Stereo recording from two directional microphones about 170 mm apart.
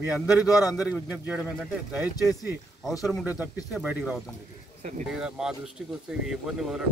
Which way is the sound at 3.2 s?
10° right (ahead or behind).